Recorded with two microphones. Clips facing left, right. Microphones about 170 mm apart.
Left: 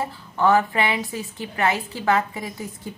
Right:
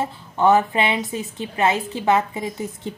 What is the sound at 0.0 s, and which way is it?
A woman's voice, 20° right (ahead or behind).